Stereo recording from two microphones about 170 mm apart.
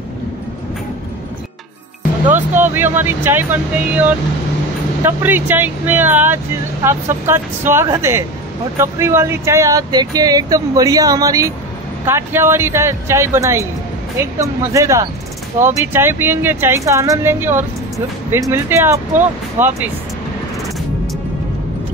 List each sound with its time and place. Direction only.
2.2 s speech: 10° right (ahead or behind)